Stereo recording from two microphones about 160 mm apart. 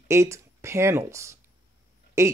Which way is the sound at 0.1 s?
15° right (ahead or behind).